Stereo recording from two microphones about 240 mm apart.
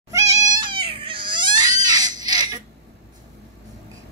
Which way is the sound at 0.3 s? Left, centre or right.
Centre.